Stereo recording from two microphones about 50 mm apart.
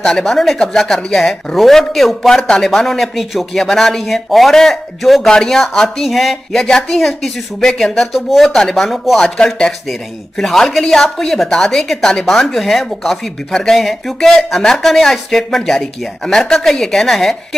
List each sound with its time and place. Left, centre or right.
0.0 s speech: centre
6.6 s speech: centre
7.1 s speech: centre
8.5 s speech: centre
8.7 s speech: centre
9.2 s speech: centre
9.7 s speech: centre